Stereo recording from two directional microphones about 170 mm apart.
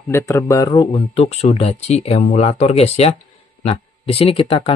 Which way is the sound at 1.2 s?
40° left (ahead or behind).